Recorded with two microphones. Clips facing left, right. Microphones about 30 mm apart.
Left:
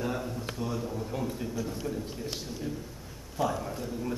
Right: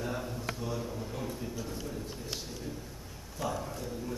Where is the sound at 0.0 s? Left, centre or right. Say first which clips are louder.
Left 3 dB; centre.